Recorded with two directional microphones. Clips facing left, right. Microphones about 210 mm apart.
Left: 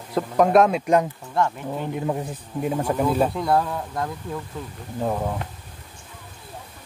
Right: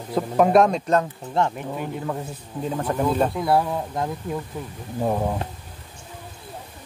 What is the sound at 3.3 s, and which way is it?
Speech, 5° right (ahead or behind).